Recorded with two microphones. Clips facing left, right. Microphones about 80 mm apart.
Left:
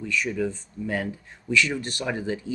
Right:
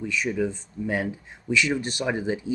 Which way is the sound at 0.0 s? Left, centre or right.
Centre.